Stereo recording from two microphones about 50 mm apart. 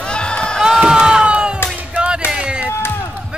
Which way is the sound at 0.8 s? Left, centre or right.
Centre.